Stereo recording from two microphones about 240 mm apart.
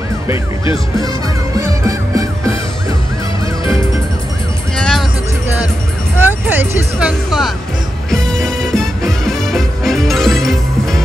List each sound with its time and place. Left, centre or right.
1.0 s music: centre
4.7 s music: centre
6.1 s music: centre